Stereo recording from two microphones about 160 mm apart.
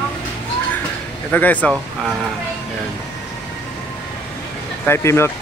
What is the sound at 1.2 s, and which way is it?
Speech, 10° left (ahead or behind).